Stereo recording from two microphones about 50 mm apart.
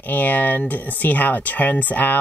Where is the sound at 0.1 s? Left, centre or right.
Left.